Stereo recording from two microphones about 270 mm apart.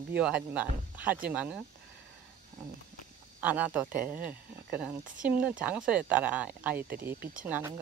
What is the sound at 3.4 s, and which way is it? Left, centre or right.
Speech, centre.